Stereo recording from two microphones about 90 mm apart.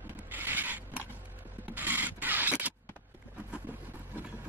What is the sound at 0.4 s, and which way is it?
Mechanisms, 20° right (ahead or behind).